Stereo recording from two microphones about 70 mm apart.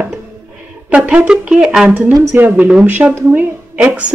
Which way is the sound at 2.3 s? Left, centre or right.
Right.